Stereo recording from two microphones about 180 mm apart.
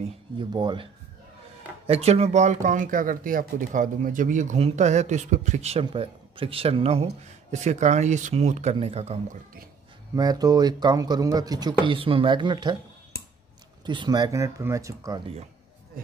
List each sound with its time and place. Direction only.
0.0 s speech: 25° right (ahead or behind)
1.9 s speech: 35° right (ahead or behind)
10.1 s speech: 20° right (ahead or behind)
13.8 s speech: 25° right (ahead or behind)